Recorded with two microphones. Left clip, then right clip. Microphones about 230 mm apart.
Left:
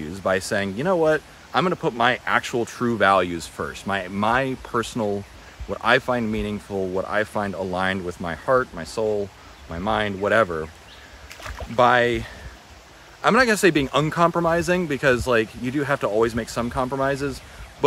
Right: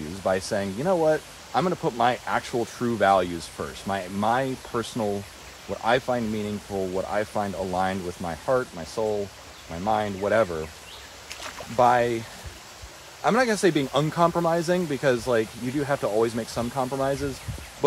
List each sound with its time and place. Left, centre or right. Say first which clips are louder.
0.2 s speech: left 3 dB; centre
11.7 s speech: left 3 dB; left
13.2 s speech: left 4 dB; left